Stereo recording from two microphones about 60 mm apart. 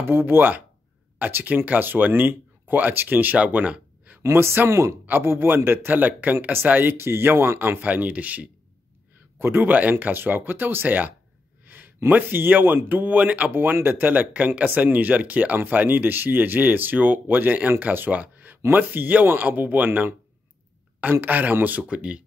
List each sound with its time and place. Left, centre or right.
0.0 s speech: right
3.3 s a sound: right
4.2 s speech: right
5.0 s speech: right
9.4 s speech: right
9.8 s speech: right
13.5 s speech: right